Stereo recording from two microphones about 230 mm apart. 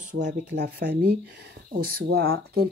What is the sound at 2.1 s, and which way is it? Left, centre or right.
Speech, right.